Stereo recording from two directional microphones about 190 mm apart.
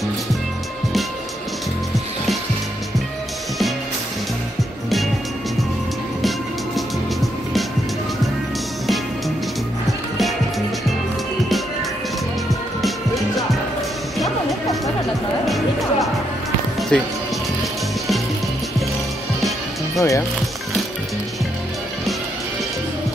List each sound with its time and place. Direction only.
4.8 s music: centre (ahead or behind)
12.8 s music: centre (ahead or behind)
20.0 s music: 15° left (ahead or behind)